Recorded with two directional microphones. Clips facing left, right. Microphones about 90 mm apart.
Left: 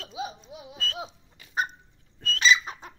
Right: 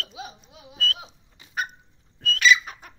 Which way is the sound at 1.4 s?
20° right (ahead or behind).